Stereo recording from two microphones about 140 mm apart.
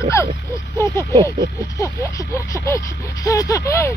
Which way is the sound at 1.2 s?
20° left (ahead or behind).